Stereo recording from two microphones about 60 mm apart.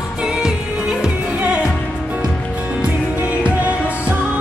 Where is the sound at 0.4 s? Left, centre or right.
Centre.